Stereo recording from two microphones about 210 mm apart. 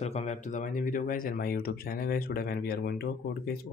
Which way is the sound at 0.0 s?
30° left (ahead or behind).